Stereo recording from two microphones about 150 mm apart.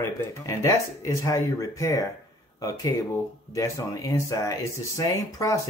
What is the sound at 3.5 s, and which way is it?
Speech, 20° left (ahead or behind).